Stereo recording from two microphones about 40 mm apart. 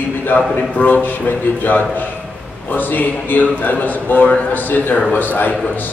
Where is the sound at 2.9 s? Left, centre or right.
Left.